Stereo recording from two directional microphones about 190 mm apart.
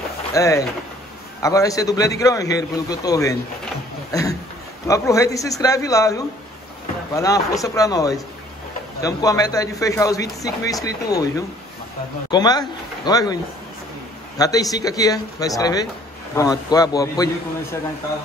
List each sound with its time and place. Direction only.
0.3 s a man's voice: 15° left (ahead or behind)
14.4 s a man's voice: 20° left (ahead or behind)